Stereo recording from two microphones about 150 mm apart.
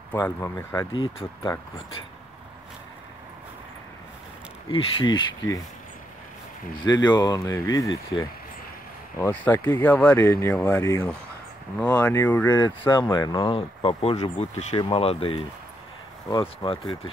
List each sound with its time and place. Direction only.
0.1 s speech: 15° left (ahead or behind)
0.9 s speech: 35° left (ahead or behind)
4.6 s speech: 35° left (ahead or behind)
6.8 s speech: 30° left (ahead or behind)
9.3 s speech: 10° left (ahead or behind)
12.4 s speech: 30° left (ahead or behind)